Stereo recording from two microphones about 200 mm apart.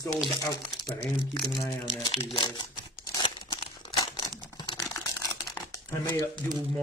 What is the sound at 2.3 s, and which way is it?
Crumpling, 20° left (ahead or behind).